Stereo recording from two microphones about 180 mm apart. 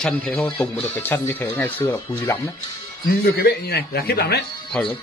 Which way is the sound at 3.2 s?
60° left (ahead or behind).